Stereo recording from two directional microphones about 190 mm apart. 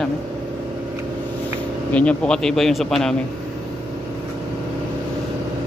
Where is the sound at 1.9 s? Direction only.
5° left (ahead or behind).